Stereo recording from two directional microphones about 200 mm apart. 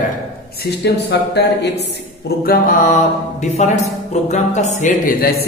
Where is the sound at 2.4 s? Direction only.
45° left (ahead or behind).